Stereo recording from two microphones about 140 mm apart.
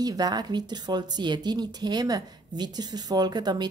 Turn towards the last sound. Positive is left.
turn(degrees=-30)  # may be behind; listen again after turning